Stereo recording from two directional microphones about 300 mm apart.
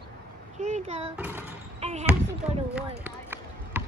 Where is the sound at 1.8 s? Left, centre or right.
Right.